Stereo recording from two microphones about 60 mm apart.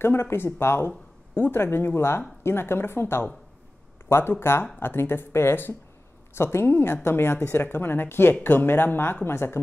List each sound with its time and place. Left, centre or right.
0.0 s speech: left